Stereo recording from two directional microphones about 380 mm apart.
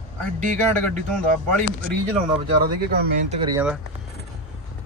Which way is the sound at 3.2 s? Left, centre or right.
Centre.